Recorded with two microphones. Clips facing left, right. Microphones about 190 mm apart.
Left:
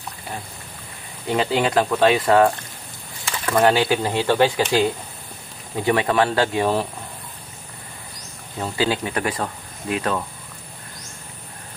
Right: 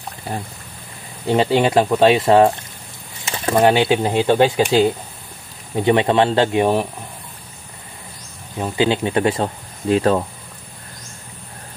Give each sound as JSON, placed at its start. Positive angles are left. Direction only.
{"t": 1.2, "sound": "speech", "side_deg": -25}
{"t": 5.8, "sound": "speech", "side_deg": -25}
{"t": 8.5, "sound": "speech", "side_deg": -20}